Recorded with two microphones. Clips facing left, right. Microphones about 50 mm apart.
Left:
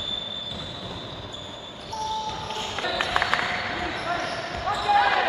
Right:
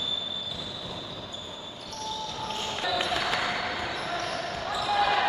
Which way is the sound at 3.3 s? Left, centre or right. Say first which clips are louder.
Left 2 dB; centre.